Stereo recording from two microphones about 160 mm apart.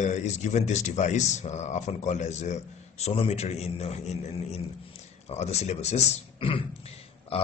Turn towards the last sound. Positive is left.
turn(degrees=35)  # may be behind; listen again after turning